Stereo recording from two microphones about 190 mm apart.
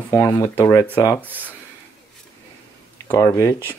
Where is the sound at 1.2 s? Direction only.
10° right (ahead or behind).